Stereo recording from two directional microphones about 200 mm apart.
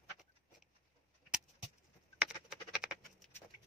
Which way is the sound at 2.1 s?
5° right (ahead or behind).